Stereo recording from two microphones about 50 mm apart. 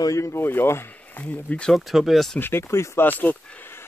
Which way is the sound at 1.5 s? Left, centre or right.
Left.